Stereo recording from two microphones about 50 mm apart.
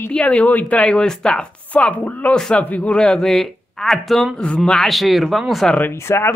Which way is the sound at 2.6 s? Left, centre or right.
Left.